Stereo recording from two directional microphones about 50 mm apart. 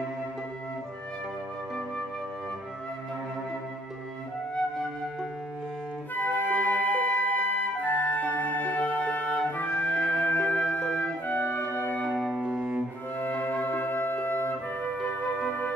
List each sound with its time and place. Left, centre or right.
6.1 s flute: left
9.9 s music: centre
10.2 s music: left
12.4 s cello: right
13.2 s music: left
15.0 s music: left